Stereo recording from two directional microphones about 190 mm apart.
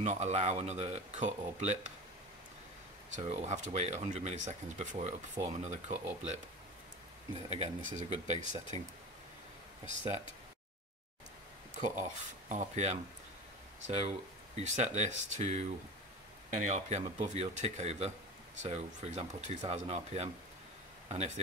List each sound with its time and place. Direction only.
0.0 s speech: 35° right (ahead or behind)
3.2 s speech: 35° right (ahead or behind)
7.4 s speech: 30° right (ahead or behind)
12.0 s speech: 40° right (ahead or behind)